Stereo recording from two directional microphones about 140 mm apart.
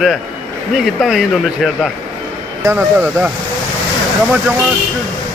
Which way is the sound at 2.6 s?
15° right (ahead or behind).